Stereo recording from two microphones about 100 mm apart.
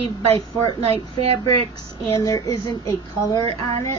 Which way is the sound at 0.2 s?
70° right (ahead or behind).